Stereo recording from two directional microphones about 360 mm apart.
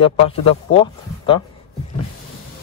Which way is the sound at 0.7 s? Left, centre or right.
Centre.